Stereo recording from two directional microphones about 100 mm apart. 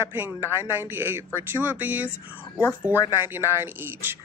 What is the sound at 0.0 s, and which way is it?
Speech, 20° right (ahead or behind).